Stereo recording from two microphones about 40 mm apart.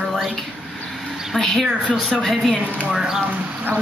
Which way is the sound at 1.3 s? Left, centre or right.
Centre.